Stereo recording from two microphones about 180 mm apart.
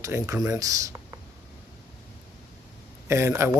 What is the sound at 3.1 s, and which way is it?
Speech, 15° right (ahead or behind).